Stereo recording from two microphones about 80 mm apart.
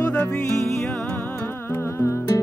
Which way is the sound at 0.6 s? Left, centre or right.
Centre.